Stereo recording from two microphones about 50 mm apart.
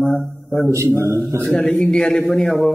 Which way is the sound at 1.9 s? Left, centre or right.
Centre.